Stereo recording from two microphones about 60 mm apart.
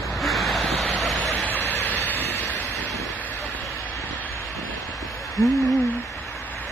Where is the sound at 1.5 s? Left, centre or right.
Left.